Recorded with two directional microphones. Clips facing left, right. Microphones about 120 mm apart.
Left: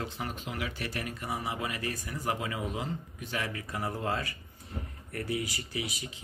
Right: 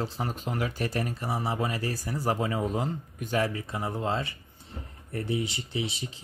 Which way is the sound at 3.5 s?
25° right (ahead or behind).